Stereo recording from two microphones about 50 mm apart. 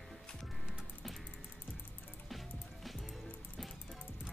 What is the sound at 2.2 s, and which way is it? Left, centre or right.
Music, centre.